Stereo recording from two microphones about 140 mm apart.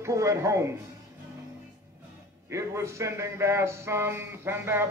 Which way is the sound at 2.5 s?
20° right (ahead or behind).